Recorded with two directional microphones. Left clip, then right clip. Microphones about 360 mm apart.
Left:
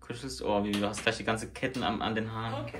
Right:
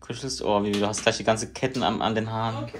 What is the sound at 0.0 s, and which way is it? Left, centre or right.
Speech, centre.